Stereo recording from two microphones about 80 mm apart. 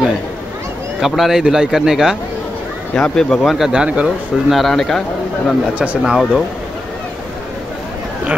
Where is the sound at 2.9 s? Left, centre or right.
Centre.